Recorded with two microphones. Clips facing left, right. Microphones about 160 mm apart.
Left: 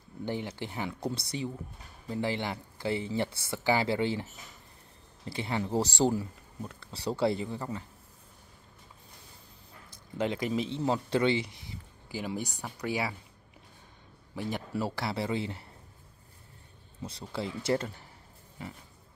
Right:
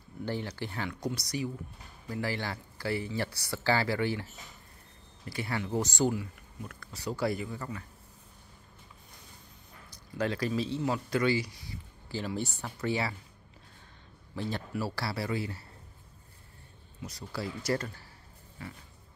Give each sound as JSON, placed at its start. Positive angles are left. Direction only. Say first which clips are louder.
{"t": 0.2, "sound": "speech", "louder": "even", "side_deg": 20}
{"t": 10.1, "sound": "speech", "louder": "left 1 dB", "side_deg": 20}
{"t": 14.3, "sound": "speech", "louder": "left 1 dB", "side_deg": 15}
{"t": 17.0, "sound": "speech", "louder": "left 2 dB", "side_deg": 30}